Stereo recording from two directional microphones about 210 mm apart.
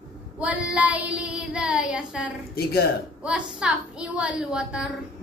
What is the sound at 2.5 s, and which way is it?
Speech, 45° left (ahead or behind).